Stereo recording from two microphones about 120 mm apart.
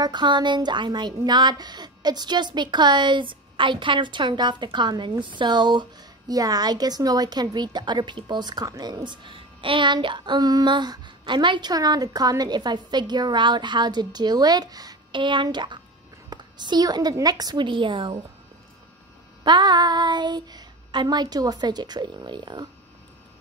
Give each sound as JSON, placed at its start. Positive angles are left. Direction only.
{"t": 0.0, "sound": "a woman's voice", "side_deg": -40}
{"t": 19.4, "sound": "a woman's voice", "side_deg": -40}